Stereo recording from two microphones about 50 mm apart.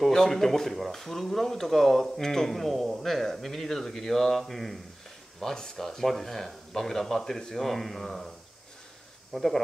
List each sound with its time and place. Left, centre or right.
0.0 s speech: centre
9.3 s speech: centre